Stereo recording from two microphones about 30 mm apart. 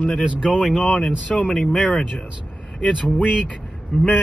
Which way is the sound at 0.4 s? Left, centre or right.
Right.